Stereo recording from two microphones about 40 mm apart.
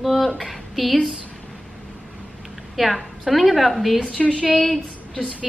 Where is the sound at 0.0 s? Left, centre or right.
Centre.